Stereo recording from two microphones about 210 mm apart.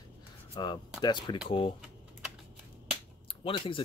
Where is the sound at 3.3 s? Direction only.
25° left (ahead or behind).